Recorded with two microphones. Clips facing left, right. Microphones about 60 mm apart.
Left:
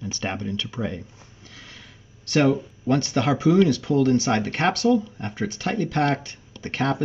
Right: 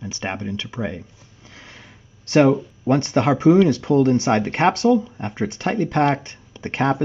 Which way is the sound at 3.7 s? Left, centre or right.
Right.